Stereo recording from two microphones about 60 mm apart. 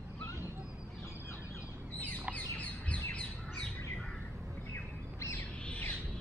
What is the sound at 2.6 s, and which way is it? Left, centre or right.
Bird, left.